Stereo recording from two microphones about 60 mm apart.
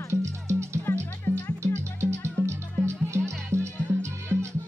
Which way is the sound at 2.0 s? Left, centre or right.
Right.